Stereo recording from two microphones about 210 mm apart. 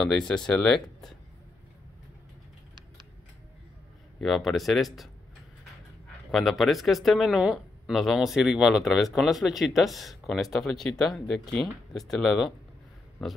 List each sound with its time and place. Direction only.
0.3 s speech: 5° left (ahead or behind)
4.2 s speech: centre (ahead or behind)
6.3 s speech: centre (ahead or behind)